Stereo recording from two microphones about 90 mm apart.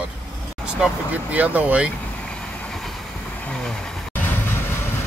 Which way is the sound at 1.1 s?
15° right (ahead or behind).